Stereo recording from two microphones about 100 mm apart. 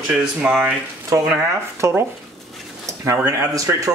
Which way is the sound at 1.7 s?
30° right (ahead or behind).